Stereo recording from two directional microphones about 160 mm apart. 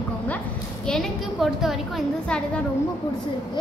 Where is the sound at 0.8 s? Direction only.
Centre (ahead or behind).